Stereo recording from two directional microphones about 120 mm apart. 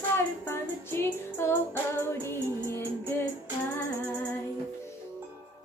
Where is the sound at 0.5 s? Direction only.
20° left (ahead or behind).